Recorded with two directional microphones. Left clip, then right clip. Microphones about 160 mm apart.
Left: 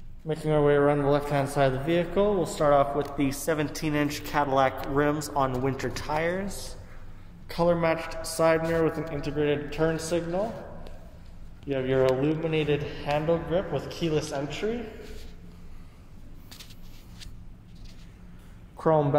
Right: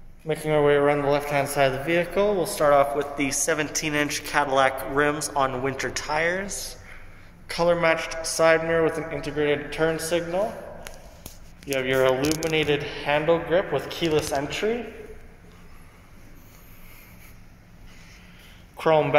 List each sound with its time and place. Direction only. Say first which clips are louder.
0.3 s a man's voice: right 3 dB; 5° left (ahead or behind)
11.7 s a man's voice: right 3 dB; 10° left (ahead or behind); by 14.8 s 15° right (ahead or behind)
18.8 s speech: right 3 dB; 25° left (ahead or behind)